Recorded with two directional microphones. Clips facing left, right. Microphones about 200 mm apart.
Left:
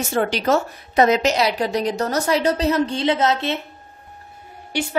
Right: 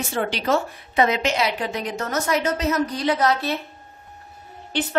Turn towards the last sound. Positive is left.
turn(degrees=10)  # may be behind; listen again after turning